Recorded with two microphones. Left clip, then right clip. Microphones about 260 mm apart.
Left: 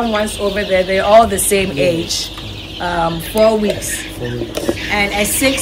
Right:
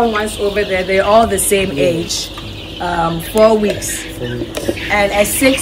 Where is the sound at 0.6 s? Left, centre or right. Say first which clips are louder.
Even; left.